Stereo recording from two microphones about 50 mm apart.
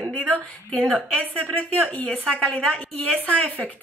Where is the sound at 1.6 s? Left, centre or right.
Left.